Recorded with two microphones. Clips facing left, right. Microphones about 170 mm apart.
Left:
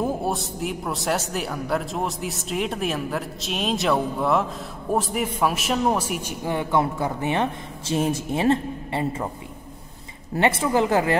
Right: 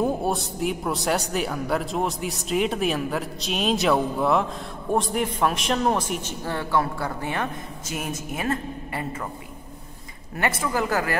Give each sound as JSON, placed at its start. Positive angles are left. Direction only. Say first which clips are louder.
{"t": 0.0, "sound": "a man's voice", "louder": "right 1 dB", "side_deg": 0}
{"t": 10.3, "sound": "a woman's voice", "louder": "left 5 dB", "side_deg": 25}